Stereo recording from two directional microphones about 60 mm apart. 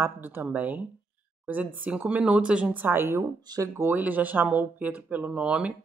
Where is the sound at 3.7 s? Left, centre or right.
Right; by 5.7 s centre.